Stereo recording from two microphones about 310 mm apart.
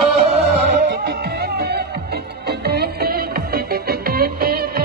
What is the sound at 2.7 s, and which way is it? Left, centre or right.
Music, right.